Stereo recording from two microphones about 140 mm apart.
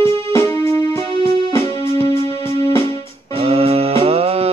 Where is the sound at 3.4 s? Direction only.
45° right (ahead or behind).